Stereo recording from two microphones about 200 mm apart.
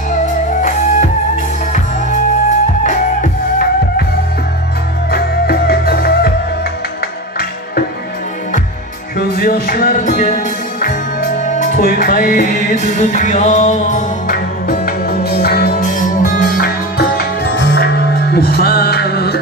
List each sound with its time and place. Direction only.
0.6 s music: 40° left (ahead or behind)
2.8 s music: 40° left (ahead or behind)
5.1 s music: 50° left (ahead or behind)
9.2 s music: 45° left (ahead or behind)